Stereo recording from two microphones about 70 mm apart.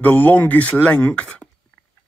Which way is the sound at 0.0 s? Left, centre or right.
Left.